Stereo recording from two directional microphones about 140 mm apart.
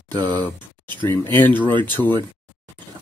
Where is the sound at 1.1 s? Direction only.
15° left (ahead or behind).